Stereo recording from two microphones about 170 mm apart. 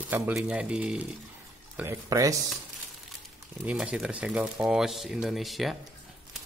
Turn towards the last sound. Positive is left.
turn(degrees=0)  # may be behind; listen again after turning